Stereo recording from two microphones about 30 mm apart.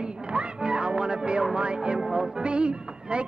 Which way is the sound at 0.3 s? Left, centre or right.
Right.